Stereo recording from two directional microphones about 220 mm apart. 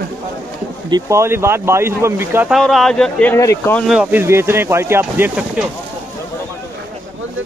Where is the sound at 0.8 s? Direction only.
15° right (ahead or behind); by 3.8 s 10° left (ahead or behind).